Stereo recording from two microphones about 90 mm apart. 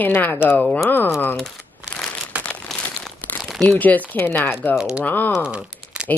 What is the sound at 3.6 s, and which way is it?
Speech, 20° left (ahead or behind).